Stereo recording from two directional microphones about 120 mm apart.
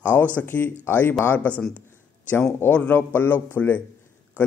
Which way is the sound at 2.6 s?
15° left (ahead or behind).